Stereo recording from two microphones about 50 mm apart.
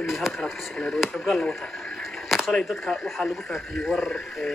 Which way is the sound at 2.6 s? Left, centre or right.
Centre.